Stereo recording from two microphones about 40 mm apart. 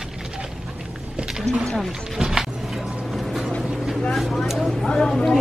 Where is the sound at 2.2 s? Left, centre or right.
Centre.